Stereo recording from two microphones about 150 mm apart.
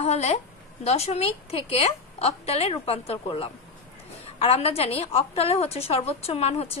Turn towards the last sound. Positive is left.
turn(degrees=45)  # may be behind; listen again after turning